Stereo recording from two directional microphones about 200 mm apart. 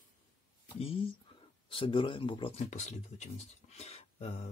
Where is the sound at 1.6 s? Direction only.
25° left (ahead or behind).